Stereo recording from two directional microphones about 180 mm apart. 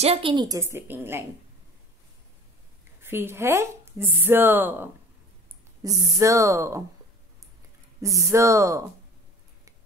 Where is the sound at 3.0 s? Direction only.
15° right (ahead or behind).